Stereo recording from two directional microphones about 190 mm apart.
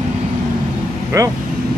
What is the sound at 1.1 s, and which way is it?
Speech, 15° right (ahead or behind).